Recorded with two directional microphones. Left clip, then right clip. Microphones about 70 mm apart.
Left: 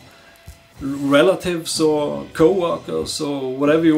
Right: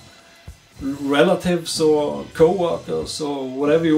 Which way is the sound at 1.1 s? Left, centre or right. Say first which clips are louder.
Left 2 dB; right.